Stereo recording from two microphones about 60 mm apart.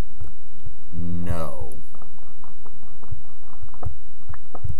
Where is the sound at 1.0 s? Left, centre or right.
Centre.